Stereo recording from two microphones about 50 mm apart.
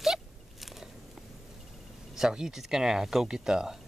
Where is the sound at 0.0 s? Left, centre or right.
Centre.